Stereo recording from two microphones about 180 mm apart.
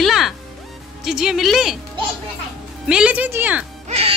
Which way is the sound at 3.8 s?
35° right (ahead or behind).